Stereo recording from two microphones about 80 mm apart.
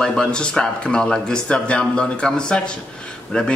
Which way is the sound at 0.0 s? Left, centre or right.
Centre.